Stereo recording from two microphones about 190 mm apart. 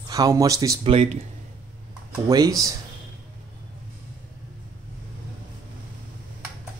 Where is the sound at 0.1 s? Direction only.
20° right (ahead or behind).